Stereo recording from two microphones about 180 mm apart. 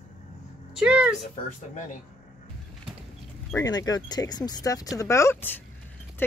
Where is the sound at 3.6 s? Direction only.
20° left (ahead or behind).